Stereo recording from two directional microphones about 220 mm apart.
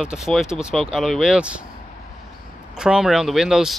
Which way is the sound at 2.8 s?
5° right (ahead or behind).